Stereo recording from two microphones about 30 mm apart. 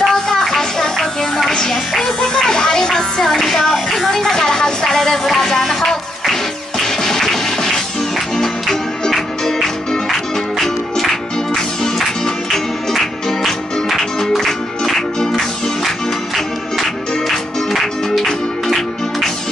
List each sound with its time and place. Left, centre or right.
0.0 s a sound: centre
1.7 s music: centre
3.3 s music: centre
4.1 s a sound: centre
5.6 s music: centre
6.8 s music: centre
8.4 s music: centre
12.9 s music: centre